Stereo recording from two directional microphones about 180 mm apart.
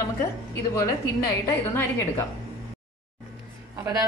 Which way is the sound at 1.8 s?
15° left (ahead or behind).